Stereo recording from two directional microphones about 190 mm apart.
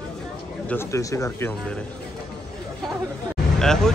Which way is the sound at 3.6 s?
5° left (ahead or behind).